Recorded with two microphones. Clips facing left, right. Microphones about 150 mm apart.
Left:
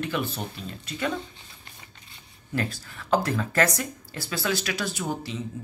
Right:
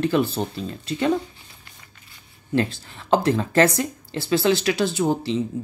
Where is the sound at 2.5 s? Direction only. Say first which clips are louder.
Right 7 dB; 25° right (ahead or behind).